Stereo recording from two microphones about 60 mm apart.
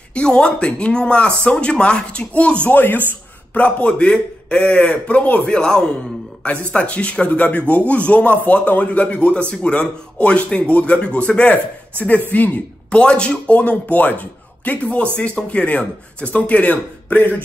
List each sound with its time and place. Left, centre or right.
0.1 s speech: centre
2.7 s speech: left